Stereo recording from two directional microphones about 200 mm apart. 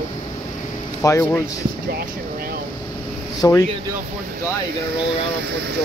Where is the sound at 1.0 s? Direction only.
15° left (ahead or behind).